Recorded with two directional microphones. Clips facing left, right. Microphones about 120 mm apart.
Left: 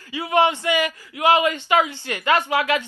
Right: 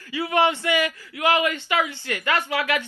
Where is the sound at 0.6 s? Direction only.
25° left (ahead or behind).